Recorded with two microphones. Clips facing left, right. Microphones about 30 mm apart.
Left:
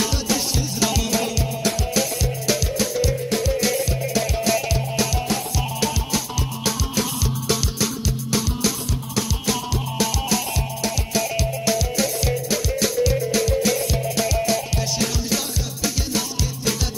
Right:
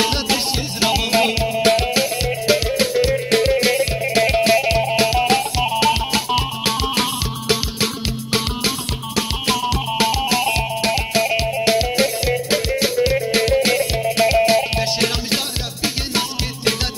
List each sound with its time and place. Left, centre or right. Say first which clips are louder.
0.0 s music: right 4 dB; right
2.0 s music: right 4 dB; right
3.3 s music: right 6 dB; right